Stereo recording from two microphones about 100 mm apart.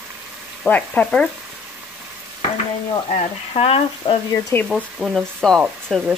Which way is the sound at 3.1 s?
90° left.